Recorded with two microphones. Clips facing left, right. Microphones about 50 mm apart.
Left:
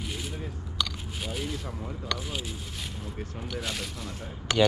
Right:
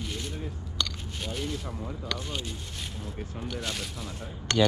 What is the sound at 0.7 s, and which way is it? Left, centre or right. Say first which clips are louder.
Biting: left 1 dB; centre.